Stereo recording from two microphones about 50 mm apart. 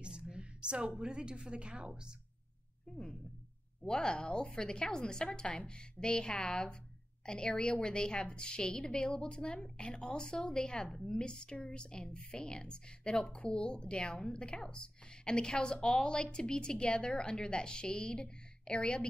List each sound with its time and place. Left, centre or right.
0.0 s a woman's voice: centre
3.8 s a woman's voice: centre